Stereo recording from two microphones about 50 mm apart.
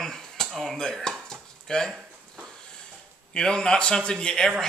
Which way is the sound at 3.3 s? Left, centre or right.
Centre.